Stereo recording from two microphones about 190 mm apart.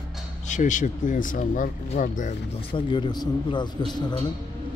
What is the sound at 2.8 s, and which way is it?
Speech, 25° left (ahead or behind).